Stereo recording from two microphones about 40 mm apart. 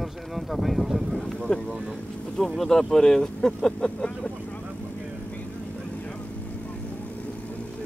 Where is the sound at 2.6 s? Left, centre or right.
Centre; by 4.3 s left.